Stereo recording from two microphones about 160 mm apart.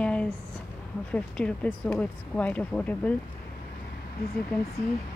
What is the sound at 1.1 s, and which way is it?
Speech, 5° left (ahead or behind).